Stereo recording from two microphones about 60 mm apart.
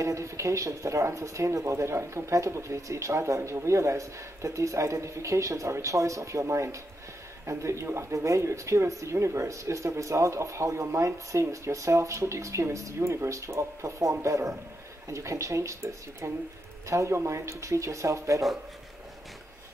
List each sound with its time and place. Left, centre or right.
0.0 s speech: right